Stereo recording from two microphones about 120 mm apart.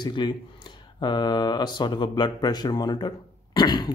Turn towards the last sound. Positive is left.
turn(degrees=35)  # may be behind; listen again after turning